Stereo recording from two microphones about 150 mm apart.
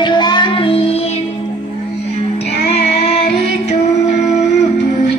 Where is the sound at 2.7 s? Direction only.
45° left (ahead or behind).